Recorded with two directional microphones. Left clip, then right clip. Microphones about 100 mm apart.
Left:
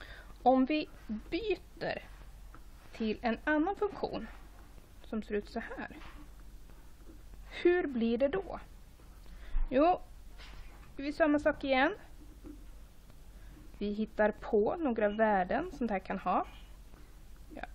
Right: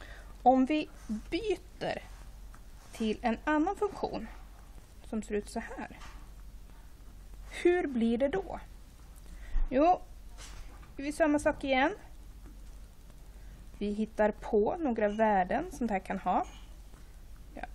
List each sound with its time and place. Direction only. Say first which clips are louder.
0.0 s a sound: even; 5° left (ahead or behind)
0.4 s a woman's voice: right 2 dB; 15° left (ahead or behind); by 5.9 s 35° left (ahead or behind)
7.5 s a woman's voice: right 1 dB; 25° left (ahead or behind)
9.7 s a woman's voice: right 2 dB; 30° left (ahead or behind)
13.7 s a woman's voice: right 1 dB; 30° left (ahead or behind)